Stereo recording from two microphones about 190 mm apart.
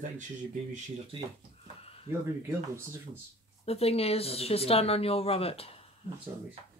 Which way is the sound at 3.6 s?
30° left (ahead or behind).